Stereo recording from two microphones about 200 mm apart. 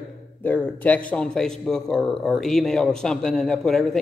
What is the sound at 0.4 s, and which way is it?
A man's voice, 10° left (ahead or behind).